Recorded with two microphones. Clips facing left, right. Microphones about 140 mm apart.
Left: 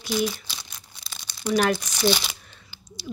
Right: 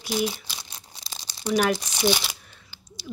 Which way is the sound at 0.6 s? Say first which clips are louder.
Right 1 dB; 35° right (ahead or behind).